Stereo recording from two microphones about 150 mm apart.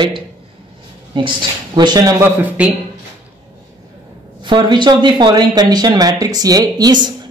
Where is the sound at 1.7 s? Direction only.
25° right (ahead or behind).